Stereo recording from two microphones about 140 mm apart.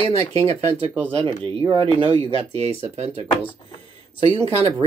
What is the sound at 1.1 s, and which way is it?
Speech, 40° right (ahead or behind).